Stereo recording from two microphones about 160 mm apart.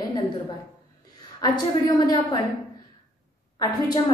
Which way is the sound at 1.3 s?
30° left (ahead or behind).